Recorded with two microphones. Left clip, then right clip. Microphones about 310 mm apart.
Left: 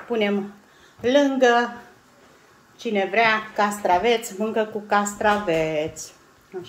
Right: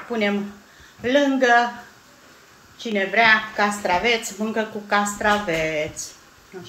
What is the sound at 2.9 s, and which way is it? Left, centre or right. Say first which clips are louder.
A woman's voice: right 3 dB; left.